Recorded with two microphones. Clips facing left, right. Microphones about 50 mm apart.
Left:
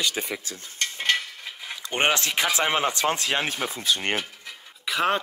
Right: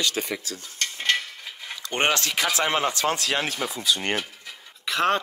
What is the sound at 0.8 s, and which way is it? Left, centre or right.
Cutlery, centre.